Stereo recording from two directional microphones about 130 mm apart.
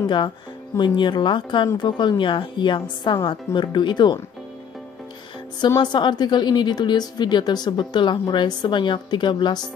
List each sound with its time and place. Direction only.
0.0 s a woman's voice: 35° left (ahead or behind)
5.8 s a woman's voice: 35° left (ahead or behind)